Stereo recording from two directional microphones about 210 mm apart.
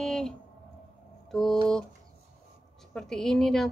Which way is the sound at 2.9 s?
Centre (ahead or behind).